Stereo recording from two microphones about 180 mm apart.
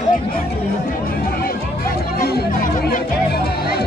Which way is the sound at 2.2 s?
60° left (ahead or behind).